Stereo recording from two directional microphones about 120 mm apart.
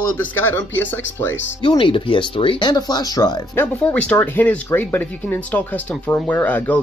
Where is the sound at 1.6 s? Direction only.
45° left (ahead or behind).